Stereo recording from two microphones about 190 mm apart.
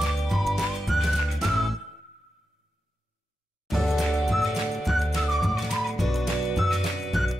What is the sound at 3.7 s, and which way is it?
Music, centre (ahead or behind).